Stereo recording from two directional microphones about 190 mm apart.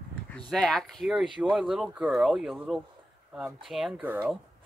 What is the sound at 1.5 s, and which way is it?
Speech, centre (ahead or behind).